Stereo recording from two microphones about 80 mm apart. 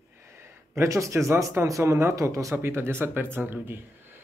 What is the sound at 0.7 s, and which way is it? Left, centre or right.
Speech, right.